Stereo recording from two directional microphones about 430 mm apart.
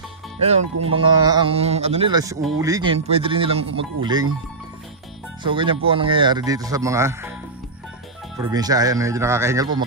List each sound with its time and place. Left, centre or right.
0.9 s speech: centre
5.4 s speech: centre
8.4 s speech: centre